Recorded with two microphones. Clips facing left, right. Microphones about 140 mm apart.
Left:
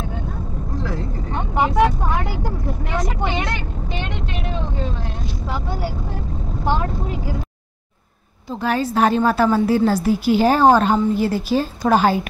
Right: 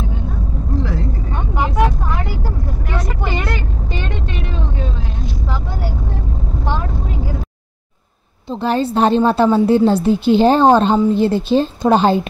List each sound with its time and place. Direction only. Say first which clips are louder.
8.5 s a woman's voice: right 3 dB; 30° right (ahead or behind)